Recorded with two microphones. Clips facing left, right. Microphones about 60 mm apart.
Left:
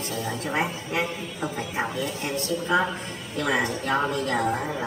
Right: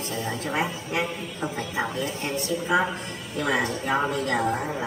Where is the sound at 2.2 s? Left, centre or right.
Right.